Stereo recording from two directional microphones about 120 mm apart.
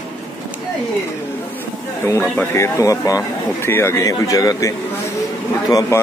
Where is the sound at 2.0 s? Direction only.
20° left (ahead or behind).